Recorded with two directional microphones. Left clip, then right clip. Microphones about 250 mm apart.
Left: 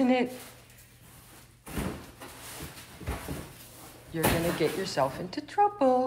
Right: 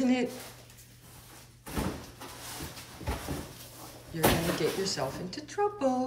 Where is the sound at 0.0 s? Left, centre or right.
Centre.